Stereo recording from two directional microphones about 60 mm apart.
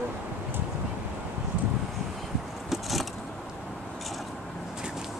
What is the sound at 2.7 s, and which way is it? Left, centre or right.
Vehicle, centre.